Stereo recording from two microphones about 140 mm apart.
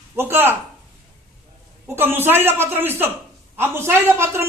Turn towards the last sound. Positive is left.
turn(degrees=-20)  # may be behind; listen again after turning